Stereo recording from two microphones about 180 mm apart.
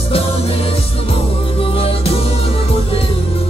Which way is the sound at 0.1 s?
30° left (ahead or behind).